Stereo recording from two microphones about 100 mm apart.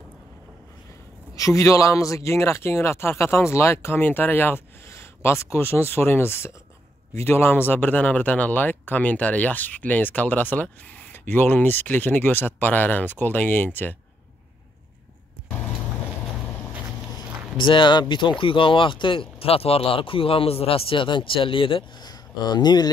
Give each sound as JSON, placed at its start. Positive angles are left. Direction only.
{"t": 1.3, "sound": "a man's voice", "side_deg": 35}
{"t": 17.6, "sound": "speech", "side_deg": 55}